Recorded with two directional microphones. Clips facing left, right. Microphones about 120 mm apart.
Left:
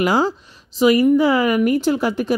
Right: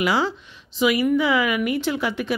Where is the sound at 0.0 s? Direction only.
45° left (ahead or behind).